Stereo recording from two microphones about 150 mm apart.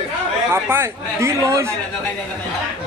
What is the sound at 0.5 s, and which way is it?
Speech, 15° right (ahead or behind).